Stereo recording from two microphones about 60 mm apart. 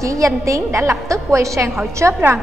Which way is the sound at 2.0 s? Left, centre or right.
Right.